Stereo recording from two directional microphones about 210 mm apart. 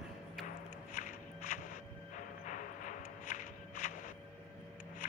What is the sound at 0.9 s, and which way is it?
Walk, 35° left (ahead or behind).